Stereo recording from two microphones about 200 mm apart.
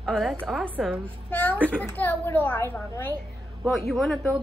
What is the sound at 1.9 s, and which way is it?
A child's voice, 10° left (ahead or behind).